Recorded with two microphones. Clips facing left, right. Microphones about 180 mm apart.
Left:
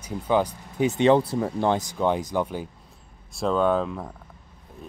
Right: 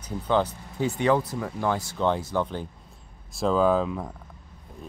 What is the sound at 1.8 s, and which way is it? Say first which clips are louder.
Speech: left 1 dB; 15° left (ahead or behind).